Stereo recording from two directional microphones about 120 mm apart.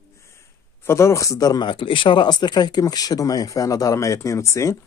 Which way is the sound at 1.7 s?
45° left (ahead or behind).